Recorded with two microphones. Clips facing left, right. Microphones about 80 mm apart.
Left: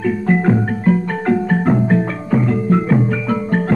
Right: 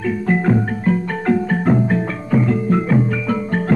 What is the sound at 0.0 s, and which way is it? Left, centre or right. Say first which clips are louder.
Music: left 2 dB; left.